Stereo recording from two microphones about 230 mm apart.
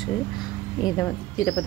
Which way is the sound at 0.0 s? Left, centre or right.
Centre.